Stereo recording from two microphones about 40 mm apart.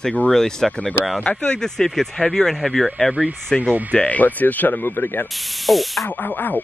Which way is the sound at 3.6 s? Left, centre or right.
Right.